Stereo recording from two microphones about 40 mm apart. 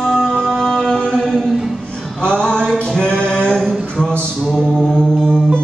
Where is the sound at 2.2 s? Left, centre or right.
Left.